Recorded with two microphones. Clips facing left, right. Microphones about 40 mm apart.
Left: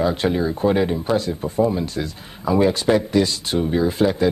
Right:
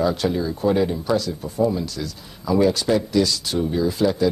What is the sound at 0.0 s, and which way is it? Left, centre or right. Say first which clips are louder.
Speech: left 2 dB; left.